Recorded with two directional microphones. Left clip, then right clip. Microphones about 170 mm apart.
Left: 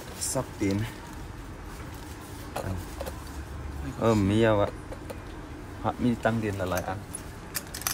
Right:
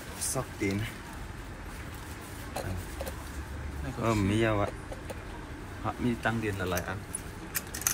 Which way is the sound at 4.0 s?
80° left.